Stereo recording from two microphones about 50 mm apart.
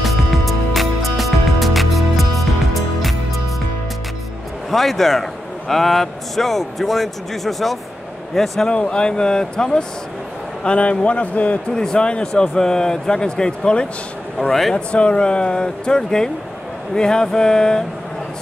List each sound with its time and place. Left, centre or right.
0.0 s music: centre
4.6 s a man's voice: centre
8.6 s a man's voice: left
11.7 s a man's voice: centre
14.5 s a man's voice: centre
14.9 s a man's voice: left